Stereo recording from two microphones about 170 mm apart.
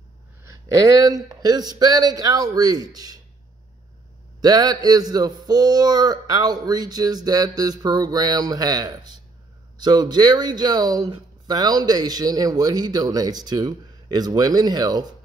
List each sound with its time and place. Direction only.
0.4 s speech: 20° right (ahead or behind)
4.4 s speech: 25° right (ahead or behind)